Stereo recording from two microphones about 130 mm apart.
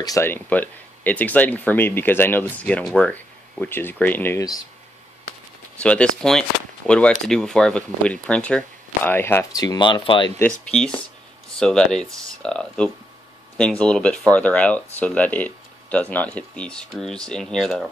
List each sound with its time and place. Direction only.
0.0 s speech: 25° left (ahead or behind)
0.3 s speech: 15° left (ahead or behind)
5.8 s speech: 10° left (ahead or behind)
9.6 s speech: 35° left (ahead or behind)
10.4 s speech: 5° left (ahead or behind)